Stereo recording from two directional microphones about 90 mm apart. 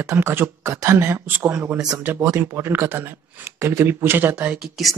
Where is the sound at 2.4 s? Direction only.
25° right (ahead or behind).